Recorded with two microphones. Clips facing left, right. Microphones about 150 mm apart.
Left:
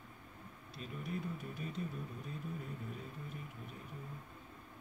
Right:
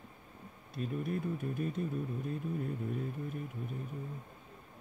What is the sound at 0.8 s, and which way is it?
Speech, 50° right (ahead or behind).